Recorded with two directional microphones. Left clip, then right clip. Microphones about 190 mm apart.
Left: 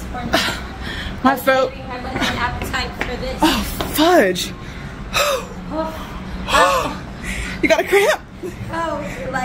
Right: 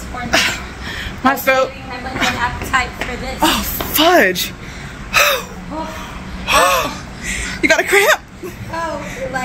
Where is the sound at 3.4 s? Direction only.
25° left (ahead or behind).